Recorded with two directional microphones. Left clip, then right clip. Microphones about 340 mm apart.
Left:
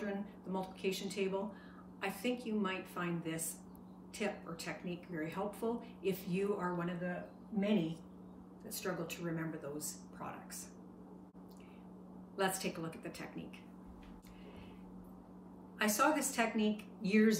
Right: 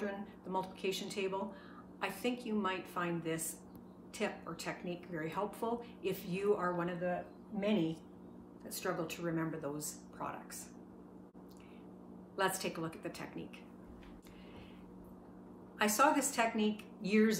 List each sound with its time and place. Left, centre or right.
0.0 s speech: centre
12.4 s speech: centre
15.8 s speech: centre